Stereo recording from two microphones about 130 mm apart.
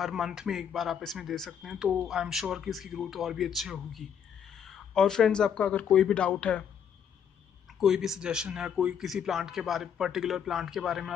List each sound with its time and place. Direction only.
0.0 s speech: centre (ahead or behind)
7.8 s speech: 5° right (ahead or behind)